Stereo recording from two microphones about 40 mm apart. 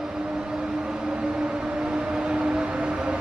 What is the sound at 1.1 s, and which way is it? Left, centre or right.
Vehicle, right.